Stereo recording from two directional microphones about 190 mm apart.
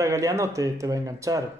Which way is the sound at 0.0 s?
15° right (ahead or behind).